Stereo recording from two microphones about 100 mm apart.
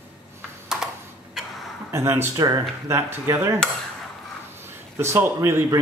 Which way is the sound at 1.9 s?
25° right (ahead or behind).